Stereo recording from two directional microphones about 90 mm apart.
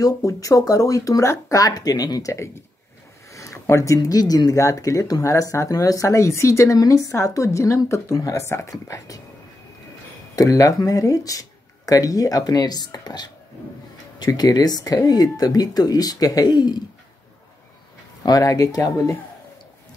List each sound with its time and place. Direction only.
0.0 s speech: 40° left (ahead or behind)
1.7 s speech: 45° left (ahead or behind)
10.3 s speech: 40° left (ahead or behind)
18.2 s speech: 40° left (ahead or behind)